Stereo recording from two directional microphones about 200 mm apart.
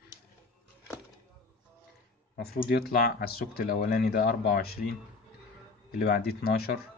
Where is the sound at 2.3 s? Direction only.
50° left (ahead or behind).